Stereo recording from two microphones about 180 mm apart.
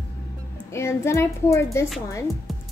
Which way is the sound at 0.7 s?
15° left (ahead or behind).